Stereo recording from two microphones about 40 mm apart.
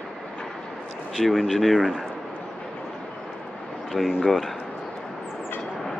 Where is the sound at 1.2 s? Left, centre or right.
Centre.